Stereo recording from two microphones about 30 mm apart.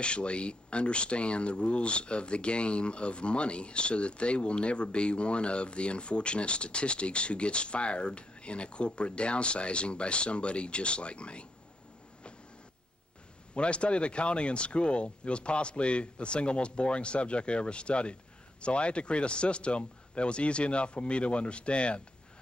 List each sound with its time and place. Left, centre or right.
0.0 s speech: left
13.6 s speech: left